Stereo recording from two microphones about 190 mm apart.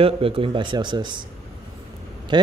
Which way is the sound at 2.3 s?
25° right (ahead or behind).